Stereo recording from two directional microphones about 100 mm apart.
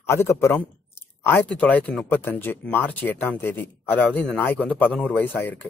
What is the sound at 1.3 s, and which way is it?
Speech, 15° left (ahead or behind).